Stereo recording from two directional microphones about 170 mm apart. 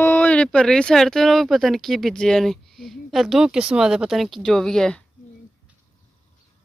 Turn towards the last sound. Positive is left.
turn(degrees=5)  # may be behind; listen again after turning